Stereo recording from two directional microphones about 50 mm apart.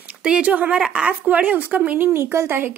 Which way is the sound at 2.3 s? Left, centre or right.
Right.